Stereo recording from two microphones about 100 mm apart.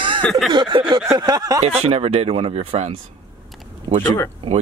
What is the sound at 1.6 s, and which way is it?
Speech, 90° right.